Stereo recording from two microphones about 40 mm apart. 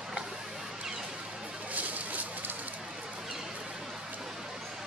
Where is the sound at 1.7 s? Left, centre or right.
Right.